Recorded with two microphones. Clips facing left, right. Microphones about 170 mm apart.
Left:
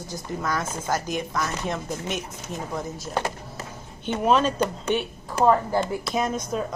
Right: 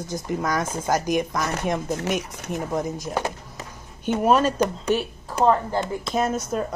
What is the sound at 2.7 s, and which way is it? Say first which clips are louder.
Speech: right 6 dB; 20° right (ahead or behind).